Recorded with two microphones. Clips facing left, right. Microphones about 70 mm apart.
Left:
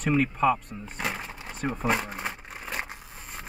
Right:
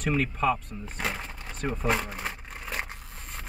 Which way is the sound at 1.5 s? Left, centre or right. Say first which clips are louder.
Left 1 dB; centre.